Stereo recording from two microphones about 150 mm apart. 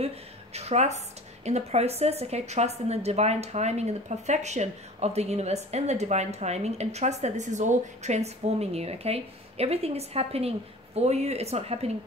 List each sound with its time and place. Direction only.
0.0 s a woman's voice: 45° right (ahead or behind)